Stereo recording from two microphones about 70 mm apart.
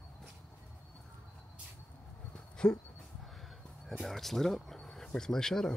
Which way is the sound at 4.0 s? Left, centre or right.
Centre.